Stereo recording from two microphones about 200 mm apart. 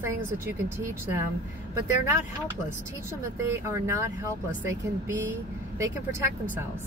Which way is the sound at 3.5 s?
15° right (ahead or behind).